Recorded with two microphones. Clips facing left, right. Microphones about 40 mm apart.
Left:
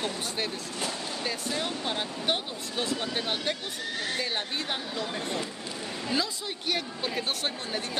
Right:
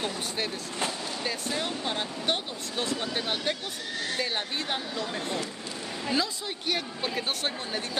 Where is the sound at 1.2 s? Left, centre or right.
Centre.